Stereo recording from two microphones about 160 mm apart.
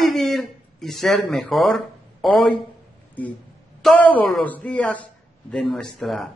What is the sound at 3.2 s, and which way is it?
A man's voice, 10° left (ahead or behind).